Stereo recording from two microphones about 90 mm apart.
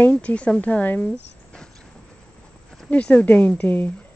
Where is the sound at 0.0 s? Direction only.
15° left (ahead or behind).